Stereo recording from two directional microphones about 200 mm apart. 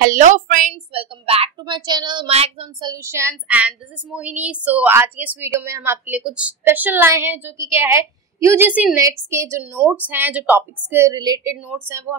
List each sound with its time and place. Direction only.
0.0 s a woman's voice: 40° right (ahead or behind)
0.9 s a woman's voice: 30° right (ahead or behind)